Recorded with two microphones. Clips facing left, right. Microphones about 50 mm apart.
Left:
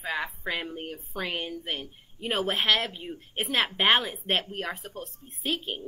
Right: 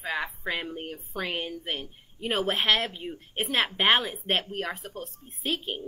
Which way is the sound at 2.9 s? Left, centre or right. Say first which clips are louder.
Right 1 dB; right.